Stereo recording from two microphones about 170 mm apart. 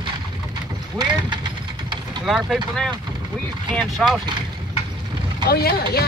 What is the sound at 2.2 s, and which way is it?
Speech, centre (ahead or behind).